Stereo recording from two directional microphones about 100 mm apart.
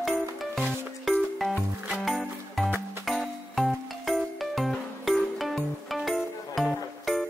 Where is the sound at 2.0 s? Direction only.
Centre (ahead or behind).